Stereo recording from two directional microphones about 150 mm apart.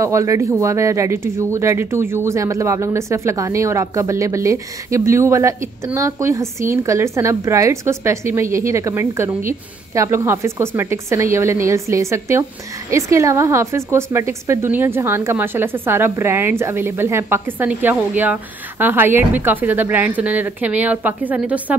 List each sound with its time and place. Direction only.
0.0 s a woman's voice: 20° right (ahead or behind)